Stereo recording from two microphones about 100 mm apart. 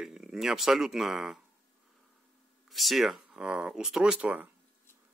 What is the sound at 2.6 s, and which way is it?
Speech, centre (ahead or behind).